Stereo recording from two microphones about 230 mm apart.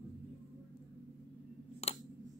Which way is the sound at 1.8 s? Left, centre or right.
Left.